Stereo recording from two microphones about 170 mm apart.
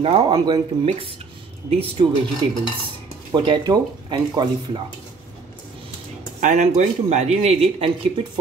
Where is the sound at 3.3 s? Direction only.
25° right (ahead or behind).